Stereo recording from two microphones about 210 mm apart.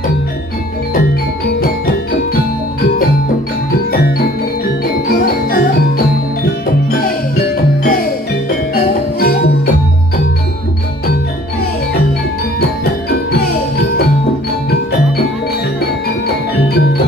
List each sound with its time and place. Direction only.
1.6 s music: 45° left (ahead or behind)
5.1 s music: 45° left (ahead or behind)
8.5 s music: 45° left (ahead or behind)